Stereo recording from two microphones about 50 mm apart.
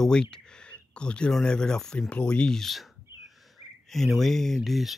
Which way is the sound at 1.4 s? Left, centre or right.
Centre.